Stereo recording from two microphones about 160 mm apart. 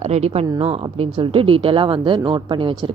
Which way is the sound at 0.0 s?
40° right (ahead or behind).